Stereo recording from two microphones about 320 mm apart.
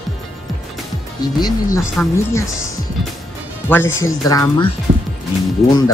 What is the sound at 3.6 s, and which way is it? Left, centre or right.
Speech, centre.